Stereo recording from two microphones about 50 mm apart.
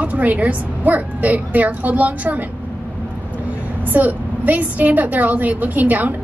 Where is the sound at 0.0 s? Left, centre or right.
Right.